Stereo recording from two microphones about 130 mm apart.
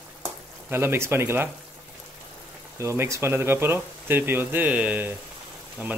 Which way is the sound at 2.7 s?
20° right (ahead or behind).